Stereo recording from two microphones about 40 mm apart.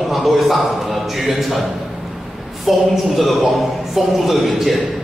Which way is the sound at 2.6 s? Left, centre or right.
Centre.